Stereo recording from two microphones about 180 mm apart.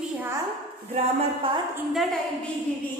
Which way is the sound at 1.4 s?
30° right (ahead or behind).